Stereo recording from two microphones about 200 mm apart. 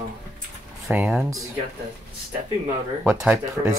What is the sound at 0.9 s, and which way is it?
Speech, 10° right (ahead or behind).